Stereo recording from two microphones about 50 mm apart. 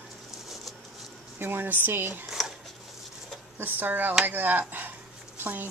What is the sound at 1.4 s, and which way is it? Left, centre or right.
Speech, right.